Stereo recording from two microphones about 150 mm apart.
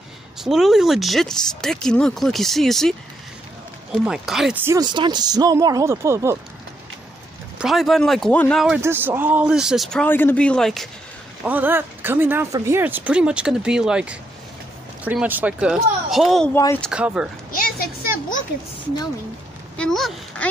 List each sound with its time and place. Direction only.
0.4 s speech: centre (ahead or behind)
4.0 s speech: 5° right (ahead or behind)
4.6 s speech: 15° right (ahead or behind)
4.8 s speech: 30° right (ahead or behind)
7.5 s speech: centre (ahead or behind)
8.8 s speech: 15° right (ahead or behind); by 10.9 s 5° left (ahead or behind)
11.4 s speech: 10° right (ahead or behind)
16.5 s speech: 20° left (ahead or behind)
16.9 s speech: 5° right (ahead or behind)
17.5 s a sound: 70° left (ahead or behind)
19.8 s speech: centre (ahead or behind)